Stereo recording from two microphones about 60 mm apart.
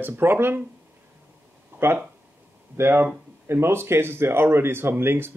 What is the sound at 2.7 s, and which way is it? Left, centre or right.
Speech, right.